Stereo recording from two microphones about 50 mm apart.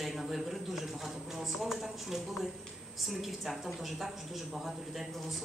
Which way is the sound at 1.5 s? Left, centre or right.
Centre.